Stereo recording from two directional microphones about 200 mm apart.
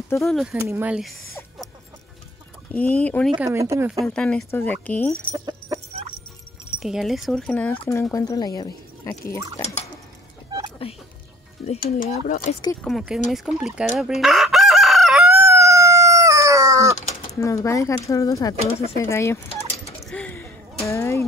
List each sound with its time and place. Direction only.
0.2 s speech: centre (ahead or behind)
0.6 s speech: 10° right (ahead or behind)
2.7 s speech: 5° left (ahead or behind)
3.3 s speech: 15° right (ahead or behind)
4.0 s speech: 5° left (ahead or behind)
5.3 s chicken: 20° right (ahead or behind)
6.8 s speech: centre (ahead or behind); by 9.4 s 15° left (ahead or behind)
10.8 s speech: 30° left (ahead or behind)
12.8 s speech: centre (ahead or behind)
13.9 s chicken: centre (ahead or behind)
17.2 s speech: 15° left (ahead or behind)
20.0 s a sound: 5° left (ahead or behind)